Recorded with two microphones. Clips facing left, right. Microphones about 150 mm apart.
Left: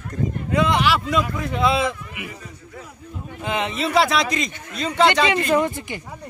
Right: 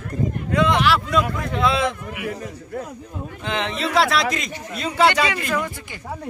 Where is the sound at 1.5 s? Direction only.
5° left (ahead or behind).